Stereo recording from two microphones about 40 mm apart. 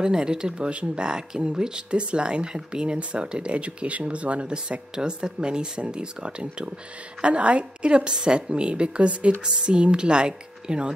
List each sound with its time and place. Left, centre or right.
0.0 s speech: centre